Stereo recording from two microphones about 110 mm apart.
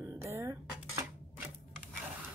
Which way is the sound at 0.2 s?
25° right (ahead or behind).